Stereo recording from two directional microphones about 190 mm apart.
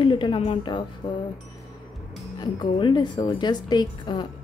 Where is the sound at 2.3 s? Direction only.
25° left (ahead or behind).